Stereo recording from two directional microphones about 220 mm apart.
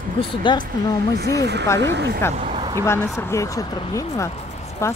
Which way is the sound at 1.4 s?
50° right (ahead or behind).